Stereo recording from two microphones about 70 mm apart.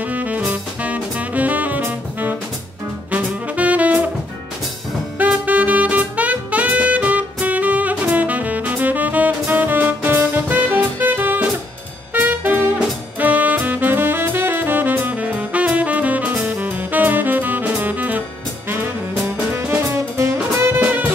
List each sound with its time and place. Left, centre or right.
0.0 s music: right
3.1 s saxophone: right
5.2 s saxophone: right
12.1 s music: right
13.2 s saxophone: right
19.5 s music: right
20.8 s music: right